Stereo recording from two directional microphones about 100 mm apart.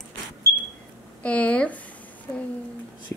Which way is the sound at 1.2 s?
15° left (ahead or behind).